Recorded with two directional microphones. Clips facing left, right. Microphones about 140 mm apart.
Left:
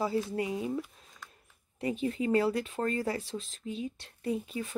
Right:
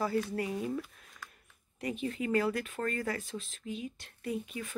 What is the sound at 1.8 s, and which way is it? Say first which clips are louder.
Speech: left 4 dB; 30° left (ahead or behind).